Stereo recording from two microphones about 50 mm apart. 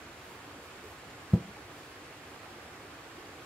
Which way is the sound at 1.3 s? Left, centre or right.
Centre.